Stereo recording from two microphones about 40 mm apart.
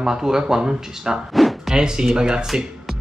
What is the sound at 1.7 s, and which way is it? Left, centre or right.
Speech, centre.